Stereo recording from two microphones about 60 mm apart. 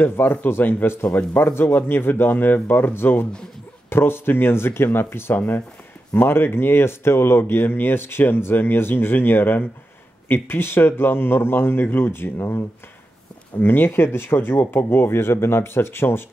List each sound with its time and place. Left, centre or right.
0.0 s speech: left
13.6 s speech: left